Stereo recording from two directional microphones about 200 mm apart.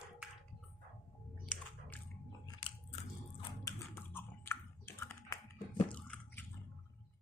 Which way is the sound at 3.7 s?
10° left (ahead or behind).